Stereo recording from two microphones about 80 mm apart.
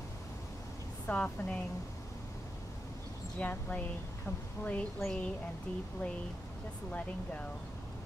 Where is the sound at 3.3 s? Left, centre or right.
Centre.